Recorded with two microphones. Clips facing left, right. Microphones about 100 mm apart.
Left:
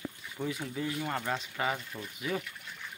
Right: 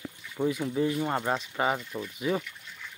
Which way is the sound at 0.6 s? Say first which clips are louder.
Right 7 dB; 25° right (ahead or behind).